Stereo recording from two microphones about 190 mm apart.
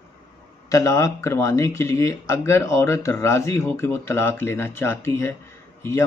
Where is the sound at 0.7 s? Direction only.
15° left (ahead or behind).